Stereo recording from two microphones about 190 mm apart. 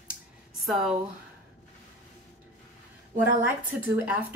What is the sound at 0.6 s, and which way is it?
Speech, centre (ahead or behind).